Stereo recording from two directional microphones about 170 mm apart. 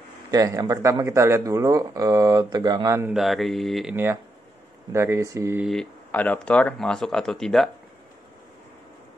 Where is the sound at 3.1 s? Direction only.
Centre (ahead or behind).